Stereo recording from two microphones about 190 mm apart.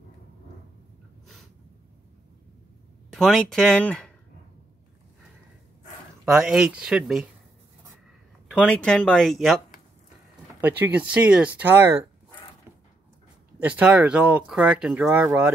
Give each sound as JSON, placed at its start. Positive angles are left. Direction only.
{"t": 3.1, "sound": "speech", "side_deg": 0}
{"t": 6.2, "sound": "speech", "side_deg": -5}
{"t": 8.5, "sound": "speech", "side_deg": 5}
{"t": 10.6, "sound": "speech", "side_deg": -10}
{"t": 13.6, "sound": "speech", "side_deg": -10}